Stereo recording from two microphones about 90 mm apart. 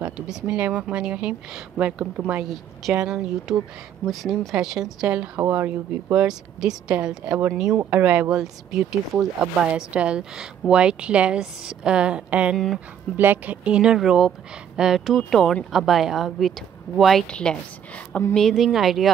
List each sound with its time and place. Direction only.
0.0 s a woman's voice: 15° right (ahead or behind)
5.5 s speech: 25° right (ahead or behind)
6.2 s a woman's voice: 5° right (ahead or behind)
8.4 s a woman's voice: 5° right (ahead or behind)
12.5 s a woman's voice: 5° left (ahead or behind)
13.1 s a woman's voice: 20° right (ahead or behind); by 19.1 s centre (ahead or behind)